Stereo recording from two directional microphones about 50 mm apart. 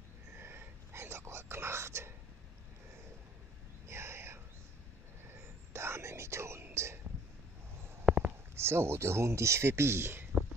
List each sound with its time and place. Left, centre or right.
0.4 s whispering: right
3.8 s a sound: right
5.7 s whispering: right
8.0 s stomach rumble: centre
8.5 s speech: right